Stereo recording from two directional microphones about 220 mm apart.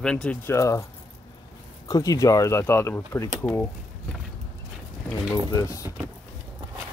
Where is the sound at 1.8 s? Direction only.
15° left (ahead or behind).